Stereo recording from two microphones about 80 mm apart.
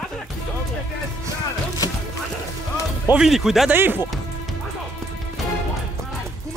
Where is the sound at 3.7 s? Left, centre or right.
Right.